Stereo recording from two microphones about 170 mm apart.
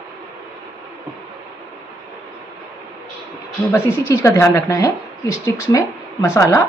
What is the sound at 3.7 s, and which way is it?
A woman's voice, 15° left (ahead or behind).